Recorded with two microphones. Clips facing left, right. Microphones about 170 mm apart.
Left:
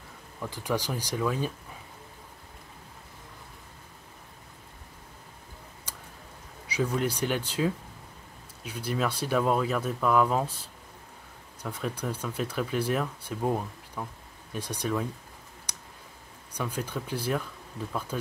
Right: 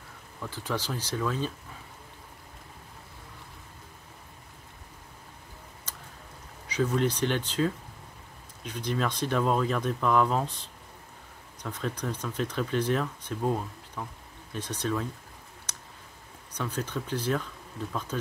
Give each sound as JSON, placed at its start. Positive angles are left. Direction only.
{"t": 0.4, "sound": "speech", "side_deg": 15}
{"t": 5.9, "sound": "a sound", "side_deg": 10}
{"t": 6.7, "sound": "speech", "side_deg": 10}
{"t": 15.7, "sound": "clicking", "side_deg": 10}
{"t": 16.5, "sound": "speech", "side_deg": 10}